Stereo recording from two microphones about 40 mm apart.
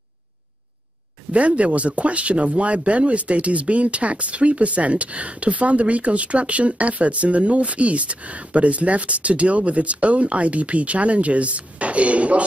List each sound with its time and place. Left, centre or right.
1.3 s speech: right